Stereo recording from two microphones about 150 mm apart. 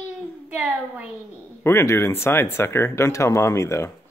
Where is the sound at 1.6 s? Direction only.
15° left (ahead or behind).